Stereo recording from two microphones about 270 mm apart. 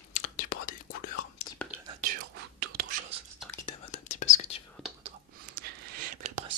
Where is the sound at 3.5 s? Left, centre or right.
Left.